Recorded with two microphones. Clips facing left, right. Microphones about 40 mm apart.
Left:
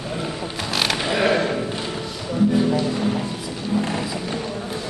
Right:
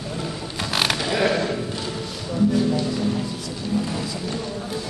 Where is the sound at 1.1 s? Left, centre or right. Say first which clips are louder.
Left 4 dB; centre.